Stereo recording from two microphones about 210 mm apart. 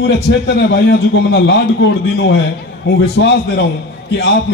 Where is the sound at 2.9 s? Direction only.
55° left (ahead or behind).